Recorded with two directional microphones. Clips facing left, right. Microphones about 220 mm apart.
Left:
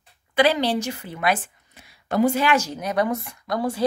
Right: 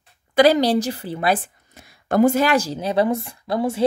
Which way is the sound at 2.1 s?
45° right (ahead or behind).